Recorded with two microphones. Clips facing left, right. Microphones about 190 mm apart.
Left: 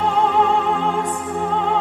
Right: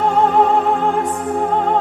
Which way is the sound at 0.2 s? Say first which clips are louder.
Right 3 dB; 45° right (ahead or behind).